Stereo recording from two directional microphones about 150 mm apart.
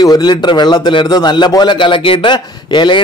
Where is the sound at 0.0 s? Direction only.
25° left (ahead or behind).